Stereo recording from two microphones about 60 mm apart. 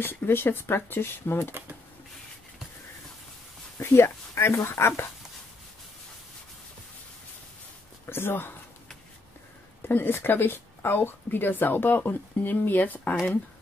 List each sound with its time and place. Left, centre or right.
0.0 s speech: left
3.8 s speech: left
8.1 s speech: left
9.8 s speech: left